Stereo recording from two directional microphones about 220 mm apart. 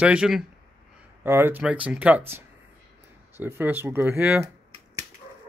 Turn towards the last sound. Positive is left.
turn(degrees=-5)  # may be behind; listen again after turning